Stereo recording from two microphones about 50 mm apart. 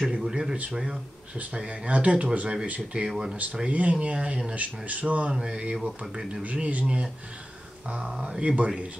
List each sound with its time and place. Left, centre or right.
0.1 s speech: centre
3.1 s speech: centre
3.7 s speech: right
5.3 s speech: centre
6.4 s speech: right